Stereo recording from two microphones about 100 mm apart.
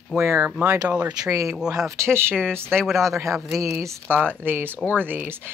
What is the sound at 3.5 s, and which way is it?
Speech, 30° right (ahead or behind).